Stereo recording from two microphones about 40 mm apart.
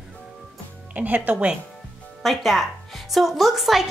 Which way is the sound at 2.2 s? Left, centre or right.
Centre.